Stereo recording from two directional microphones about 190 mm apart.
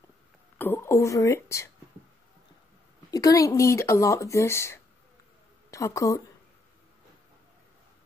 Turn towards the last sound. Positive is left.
turn(degrees=15)  # may be behind; listen again after turning